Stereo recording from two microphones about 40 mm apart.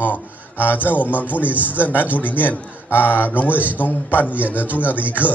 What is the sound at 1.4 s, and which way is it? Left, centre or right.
Speech, right.